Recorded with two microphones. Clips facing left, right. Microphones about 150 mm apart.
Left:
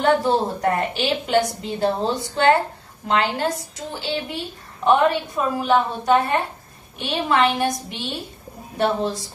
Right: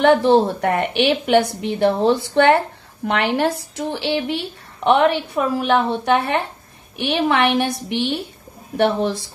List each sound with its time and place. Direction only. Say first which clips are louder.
0.0 s a woman's voice: right 5 dB; 75° right (ahead or behind)